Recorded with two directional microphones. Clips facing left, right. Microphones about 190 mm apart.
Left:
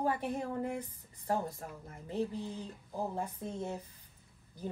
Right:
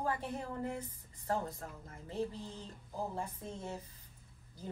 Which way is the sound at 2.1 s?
15° left (ahead or behind).